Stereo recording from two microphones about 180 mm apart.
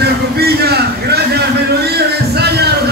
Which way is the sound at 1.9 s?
65° right (ahead or behind).